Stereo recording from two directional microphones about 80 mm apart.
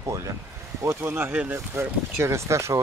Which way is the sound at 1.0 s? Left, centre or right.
Right.